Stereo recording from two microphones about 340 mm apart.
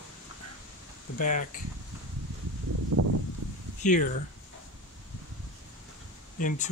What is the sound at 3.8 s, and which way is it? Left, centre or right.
Speech, left.